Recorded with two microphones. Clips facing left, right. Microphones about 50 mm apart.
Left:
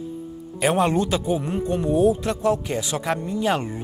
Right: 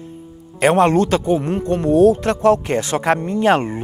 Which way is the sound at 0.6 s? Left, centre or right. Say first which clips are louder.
Right 6 dB; right.